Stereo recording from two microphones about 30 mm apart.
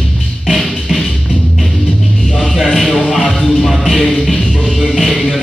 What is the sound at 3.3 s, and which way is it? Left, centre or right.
Music, centre.